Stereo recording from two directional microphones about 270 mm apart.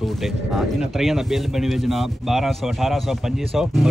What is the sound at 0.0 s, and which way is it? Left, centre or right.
Speech, centre.